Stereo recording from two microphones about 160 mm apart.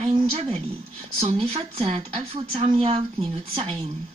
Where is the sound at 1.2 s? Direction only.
35° right (ahead or behind).